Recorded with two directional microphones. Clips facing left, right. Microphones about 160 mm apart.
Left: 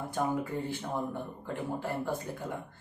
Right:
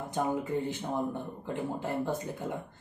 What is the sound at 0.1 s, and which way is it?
Speech, 20° right (ahead or behind).